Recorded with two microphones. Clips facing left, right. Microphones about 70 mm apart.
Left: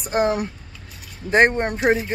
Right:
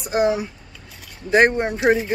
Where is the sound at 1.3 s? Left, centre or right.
Left.